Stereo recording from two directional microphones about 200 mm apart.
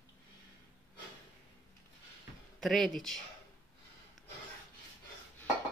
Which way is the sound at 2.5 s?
Centre (ahead or behind).